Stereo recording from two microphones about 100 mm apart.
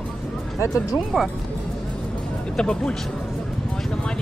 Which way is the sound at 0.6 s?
35° left (ahead or behind).